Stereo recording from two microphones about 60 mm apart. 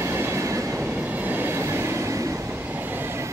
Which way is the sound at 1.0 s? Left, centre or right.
Right.